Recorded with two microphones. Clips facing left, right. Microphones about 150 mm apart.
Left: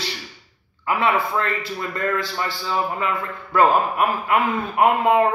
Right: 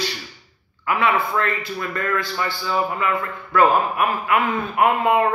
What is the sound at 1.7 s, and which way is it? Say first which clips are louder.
A man's voice: left 2 dB; 30° left (ahead or behind).